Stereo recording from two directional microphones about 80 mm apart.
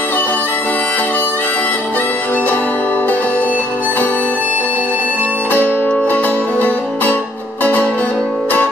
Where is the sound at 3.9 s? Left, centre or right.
Left.